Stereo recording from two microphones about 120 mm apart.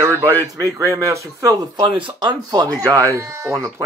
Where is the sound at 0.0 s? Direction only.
30° right (ahead or behind).